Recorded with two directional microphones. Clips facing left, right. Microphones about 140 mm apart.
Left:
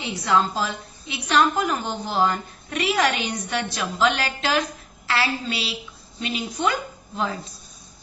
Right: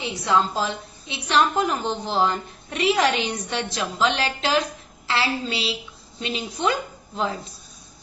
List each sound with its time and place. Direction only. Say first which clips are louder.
0.0 s a woman's voice: even; 20° right (ahead or behind)